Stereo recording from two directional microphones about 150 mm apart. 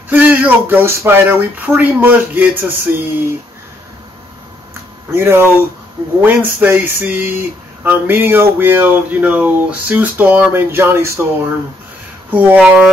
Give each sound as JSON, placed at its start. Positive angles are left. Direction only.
{"t": 0.1, "sound": "music", "side_deg": -10}
{"t": 1.7, "sound": "speech", "side_deg": -10}
{"t": 5.1, "sound": "speech", "side_deg": -15}
{"t": 12.3, "sound": "speech", "side_deg": -10}